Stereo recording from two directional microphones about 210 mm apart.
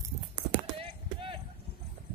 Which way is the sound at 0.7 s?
25° right (ahead or behind).